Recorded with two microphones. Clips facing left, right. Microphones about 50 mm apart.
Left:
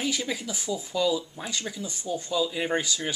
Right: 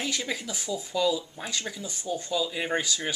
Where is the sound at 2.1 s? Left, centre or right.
Right.